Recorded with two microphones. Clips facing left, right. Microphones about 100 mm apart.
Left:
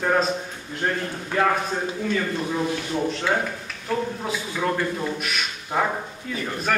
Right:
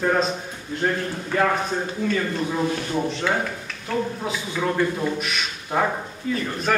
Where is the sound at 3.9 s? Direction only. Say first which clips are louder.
Even; 5° left (ahead or behind).